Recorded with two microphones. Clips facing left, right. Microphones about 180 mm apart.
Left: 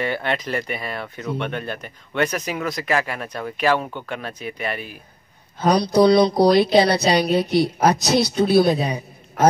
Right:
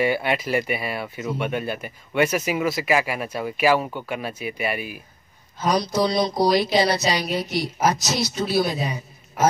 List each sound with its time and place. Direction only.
0.0 s speech: 10° right (ahead or behind)
5.6 s a woman's voice: 60° left (ahead or behind)